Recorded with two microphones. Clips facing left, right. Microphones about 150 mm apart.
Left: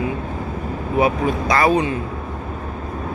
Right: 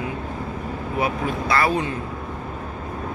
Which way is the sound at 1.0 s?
15° left (ahead or behind).